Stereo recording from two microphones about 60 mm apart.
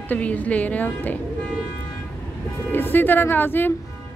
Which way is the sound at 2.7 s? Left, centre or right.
Left.